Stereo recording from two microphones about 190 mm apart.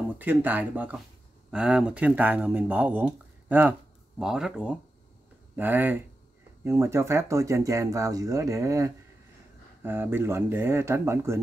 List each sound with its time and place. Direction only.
0.2 s speech: 10° right (ahead or behind)